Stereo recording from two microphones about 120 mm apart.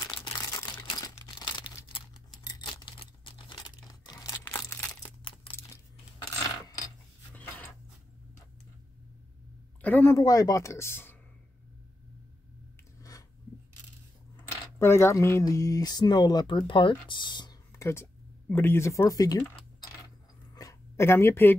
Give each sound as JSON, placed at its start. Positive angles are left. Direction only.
{"t": 0.3, "sound": "crumpling", "side_deg": 35}
{"t": 2.4, "sound": "computer keyboard", "side_deg": 40}
{"t": 4.5, "sound": "crumpling", "side_deg": 20}
{"t": 5.2, "sound": "a sound", "side_deg": 50}
{"t": 9.8, "sound": "speech", "side_deg": 15}
{"t": 10.1, "sound": "speech", "side_deg": 30}
{"t": 14.5, "sound": "speech", "side_deg": 20}
{"t": 17.7, "sound": "a sound", "side_deg": 25}
{"t": 18.5, "sound": "speech", "side_deg": 20}
{"t": 20.5, "sound": "a sound", "side_deg": 25}